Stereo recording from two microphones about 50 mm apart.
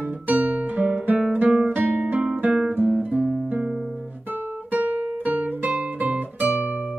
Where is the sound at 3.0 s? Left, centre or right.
Right.